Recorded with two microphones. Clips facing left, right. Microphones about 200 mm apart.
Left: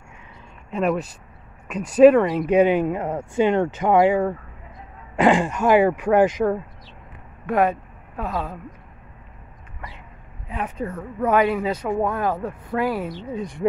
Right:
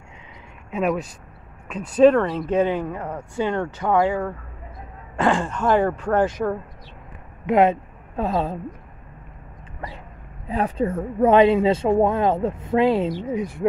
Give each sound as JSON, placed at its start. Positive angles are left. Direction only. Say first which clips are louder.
{"t": 0.7, "sound": "speech", "louder": "left 1 dB", "side_deg": 0}
{"t": 1.7, "sound": "speech", "louder": "left 2 dB", "side_deg": 10}
{"t": 7.4, "sound": "speech", "louder": "right 3 dB", "side_deg": -20}
{"t": 10.5, "sound": "speech", "louder": "right 6 dB", "side_deg": -30}